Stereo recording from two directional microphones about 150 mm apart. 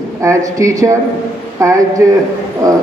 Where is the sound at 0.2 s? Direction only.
20° right (ahead or behind).